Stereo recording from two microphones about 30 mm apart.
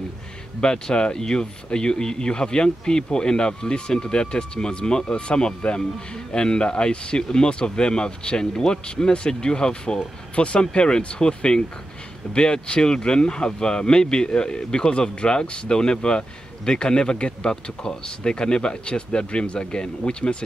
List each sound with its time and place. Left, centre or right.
0.6 s speech: left
10.3 s speech: left
10.6 s speech: left